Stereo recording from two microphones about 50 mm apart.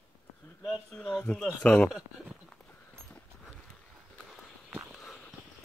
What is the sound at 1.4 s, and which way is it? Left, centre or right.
Speech, left.